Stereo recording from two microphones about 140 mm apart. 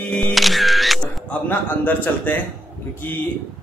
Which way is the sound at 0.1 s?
Centre (ahead or behind).